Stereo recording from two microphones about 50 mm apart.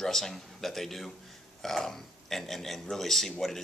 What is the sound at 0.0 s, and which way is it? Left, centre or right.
Speech, centre.